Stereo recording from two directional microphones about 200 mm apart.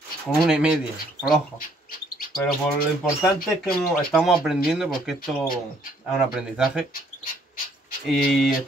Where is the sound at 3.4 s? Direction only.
Centre (ahead or behind).